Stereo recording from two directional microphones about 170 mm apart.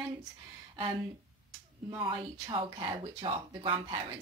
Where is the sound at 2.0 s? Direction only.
30° right (ahead or behind).